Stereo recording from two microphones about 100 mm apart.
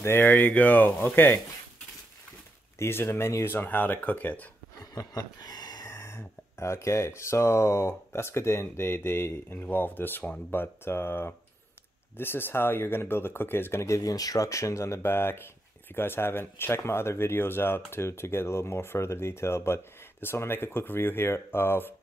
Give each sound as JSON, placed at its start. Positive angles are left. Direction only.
{"t": 0.0, "sound": "speech", "side_deg": 25}
{"t": 2.8, "sound": "speech", "side_deg": 25}
{"t": 4.9, "sound": "a sound", "side_deg": 40}
{"t": 5.9, "sound": "speech", "side_deg": 25}